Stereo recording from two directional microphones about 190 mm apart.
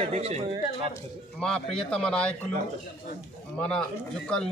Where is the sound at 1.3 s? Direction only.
5° left (ahead or behind).